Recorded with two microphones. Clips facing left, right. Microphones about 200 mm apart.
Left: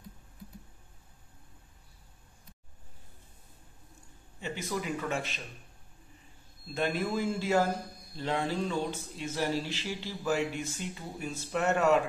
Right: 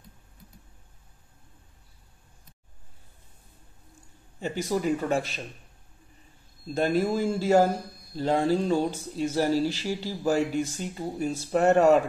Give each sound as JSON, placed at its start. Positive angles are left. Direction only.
{"t": 4.4, "sound": "speech", "side_deg": -40}
{"t": 6.7, "sound": "speech", "side_deg": -35}